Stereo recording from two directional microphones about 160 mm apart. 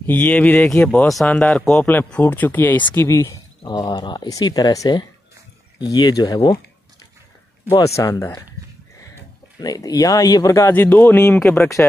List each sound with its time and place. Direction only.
0.0 s speech: 10° left (ahead or behind); by 6.6 s 25° left (ahead or behind)
7.7 s speech: 20° left (ahead or behind)
9.6 s speech: 25° left (ahead or behind)